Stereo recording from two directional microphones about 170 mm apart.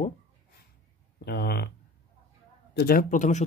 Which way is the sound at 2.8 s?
60° left (ahead or behind).